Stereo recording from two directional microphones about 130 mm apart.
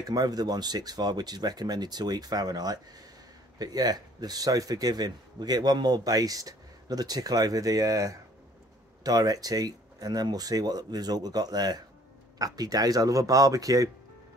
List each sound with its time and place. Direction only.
0.0 s speech: 30° right (ahead or behind)